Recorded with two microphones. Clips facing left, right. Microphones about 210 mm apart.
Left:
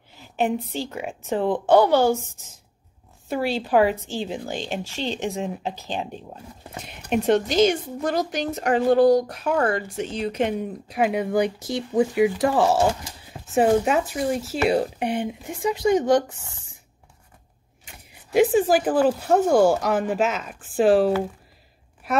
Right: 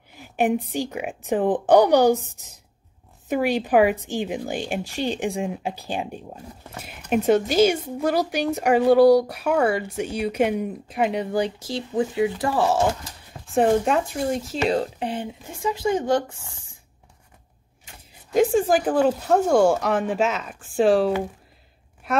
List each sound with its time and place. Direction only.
0.1 s speech: 15° right (ahead or behind)
11.0 s speech: 5° left (ahead or behind)
13.6 s speech: 5° left (ahead or behind)
18.3 s speech: 10° left (ahead or behind)